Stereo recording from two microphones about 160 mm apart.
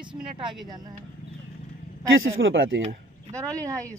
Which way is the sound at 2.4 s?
90° right.